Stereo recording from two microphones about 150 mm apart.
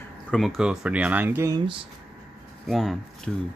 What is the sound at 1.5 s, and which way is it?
Speech, 35° right (ahead or behind).